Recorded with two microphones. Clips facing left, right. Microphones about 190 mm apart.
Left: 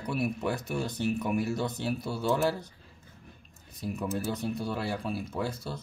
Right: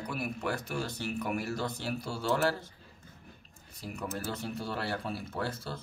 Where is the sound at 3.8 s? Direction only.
20° left (ahead or behind).